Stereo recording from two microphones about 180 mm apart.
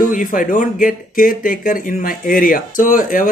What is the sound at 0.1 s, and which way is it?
Speech, 50° left (ahead or behind).